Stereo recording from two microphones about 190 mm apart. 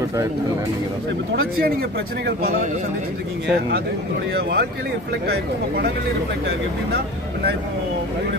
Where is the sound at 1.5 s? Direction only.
55° right (ahead or behind).